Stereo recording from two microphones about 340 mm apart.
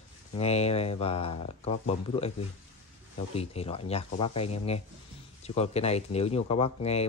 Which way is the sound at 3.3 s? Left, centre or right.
Centre.